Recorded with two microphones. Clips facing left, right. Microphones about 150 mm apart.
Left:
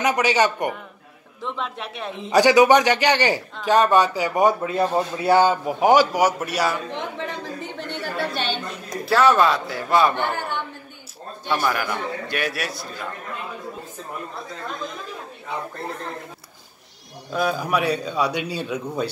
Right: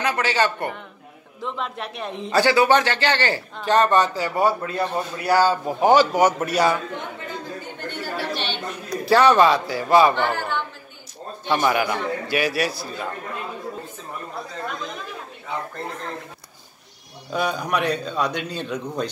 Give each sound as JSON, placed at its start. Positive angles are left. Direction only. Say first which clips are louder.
{"t": 0.0, "sound": "a man's voice", "louder": "left 2 dB", "side_deg": 15}
{"t": 1.4, "sound": "a man's voice", "louder": "even", "side_deg": 0}
{"t": 2.3, "sound": "a man's voice", "louder": "left 3 dB", "side_deg": 15}
{"t": 6.9, "sound": "chatter", "louder": "left 3 dB", "side_deg": 90}
{"t": 9.0, "sound": "a man's voice", "louder": "right 2 dB", "side_deg": 0}
{"t": 10.1, "sound": "a woman's voice", "louder": "right 2 dB", "side_deg": 15}
{"t": 11.6, "sound": "a man's voice", "louder": "right 5 dB", "side_deg": -5}
{"t": 17.3, "sound": "a man's voice", "louder": "left 1 dB", "side_deg": 0}